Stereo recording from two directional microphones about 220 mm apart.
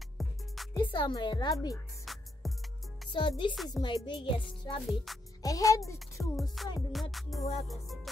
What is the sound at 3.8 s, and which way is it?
Speech, 25° left (ahead or behind).